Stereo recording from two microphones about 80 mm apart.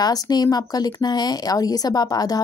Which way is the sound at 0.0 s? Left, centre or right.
Left.